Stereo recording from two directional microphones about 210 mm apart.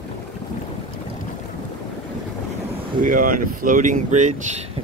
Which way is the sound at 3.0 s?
40° right (ahead or behind).